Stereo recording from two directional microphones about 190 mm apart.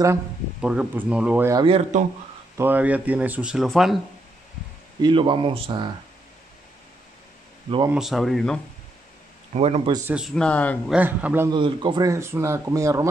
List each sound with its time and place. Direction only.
0.6 s speech: 5° right (ahead or behind)
1.5 s speech: 20° right (ahead or behind)
1.8 s a man's voice: 40° right (ahead or behind)
2.5 s speech: 10° right (ahead or behind)
5.0 s speech: 25° right (ahead or behind)
7.9 s speech: centre (ahead or behind)
9.5 s a man's voice: 30° right (ahead or behind)
10.0 s speech: 5° right (ahead or behind)
10.9 s speech: 10° right (ahead or behind)
11.5 s speech: 25° right (ahead or behind)